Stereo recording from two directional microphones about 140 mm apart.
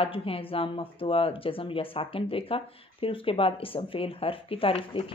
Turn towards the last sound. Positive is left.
turn(degrees=45)  # may be behind; listen again after turning